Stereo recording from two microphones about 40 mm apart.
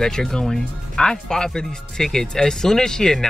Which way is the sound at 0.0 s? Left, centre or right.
Centre.